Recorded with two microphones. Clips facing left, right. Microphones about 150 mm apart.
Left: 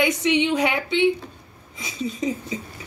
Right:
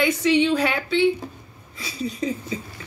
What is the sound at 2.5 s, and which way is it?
Speech, 15° left (ahead or behind).